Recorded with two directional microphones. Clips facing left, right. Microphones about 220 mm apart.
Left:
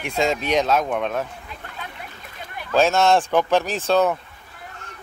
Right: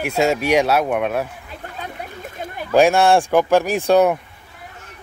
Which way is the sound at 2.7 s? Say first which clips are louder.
Right 4 dB; 15° right (ahead or behind).